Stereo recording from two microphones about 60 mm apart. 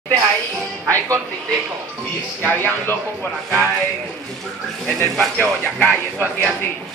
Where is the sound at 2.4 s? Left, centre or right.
Left.